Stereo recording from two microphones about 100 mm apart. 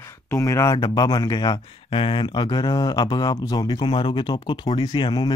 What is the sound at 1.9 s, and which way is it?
Speech, 60° left (ahead or behind).